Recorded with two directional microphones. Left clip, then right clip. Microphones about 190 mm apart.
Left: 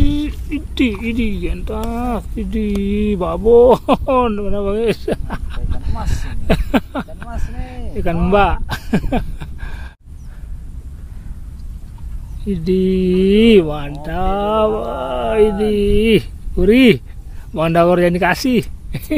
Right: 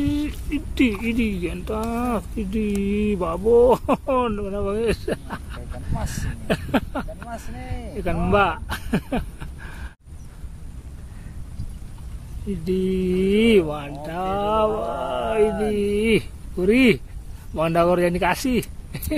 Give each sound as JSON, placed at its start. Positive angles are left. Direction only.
{"t": 0.0, "sound": "speech", "side_deg": 10}
{"t": 2.5, "sound": "speech", "side_deg": 15}
{"t": 6.2, "sound": "a sound", "side_deg": 45}
{"t": 7.4, "sound": "speech", "side_deg": 30}
{"t": 12.4, "sound": "speech", "side_deg": 40}